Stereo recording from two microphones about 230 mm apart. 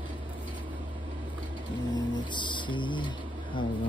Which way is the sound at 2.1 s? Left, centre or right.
Centre.